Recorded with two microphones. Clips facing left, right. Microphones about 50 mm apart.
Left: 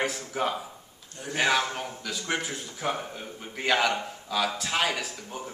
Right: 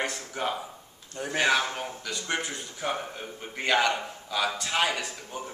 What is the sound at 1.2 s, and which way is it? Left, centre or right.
Speech, right.